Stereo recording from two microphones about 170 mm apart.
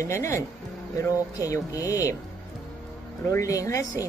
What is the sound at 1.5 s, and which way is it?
Speech, 20° left (ahead or behind).